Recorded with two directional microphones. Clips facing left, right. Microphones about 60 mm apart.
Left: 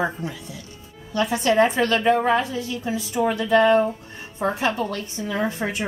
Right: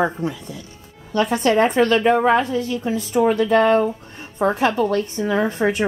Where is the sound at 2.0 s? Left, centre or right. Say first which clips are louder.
Right 3 dB; right.